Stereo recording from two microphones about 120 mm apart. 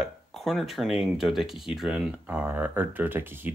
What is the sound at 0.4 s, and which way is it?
Speech, centre (ahead or behind).